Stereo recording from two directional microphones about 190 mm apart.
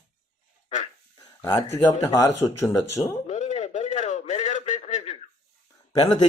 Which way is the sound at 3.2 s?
40° left (ahead or behind).